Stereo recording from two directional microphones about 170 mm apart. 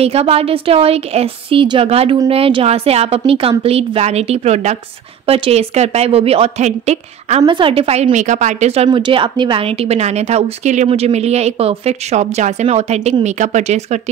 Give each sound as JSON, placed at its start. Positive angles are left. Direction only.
{"t": 0.0, "sound": "a woman's voice", "side_deg": -35}
{"t": 7.4, "sound": "a woman's voice", "side_deg": -30}